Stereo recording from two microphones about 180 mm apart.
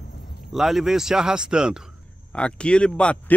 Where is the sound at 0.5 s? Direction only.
Centre (ahead or behind).